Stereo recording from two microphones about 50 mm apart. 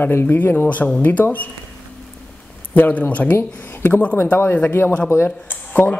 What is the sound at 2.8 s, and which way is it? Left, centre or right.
Speech, left.